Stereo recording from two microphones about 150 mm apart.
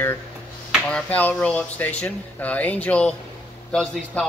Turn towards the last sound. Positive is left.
turn(degrees=5)  # may be behind; listen again after turning